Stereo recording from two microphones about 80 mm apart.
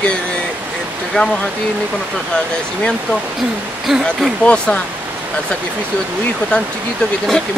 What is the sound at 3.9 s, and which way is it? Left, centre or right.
Speech, centre.